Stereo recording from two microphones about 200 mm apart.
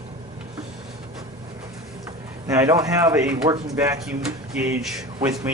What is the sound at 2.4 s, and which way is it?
Speech, 15° right (ahead or behind).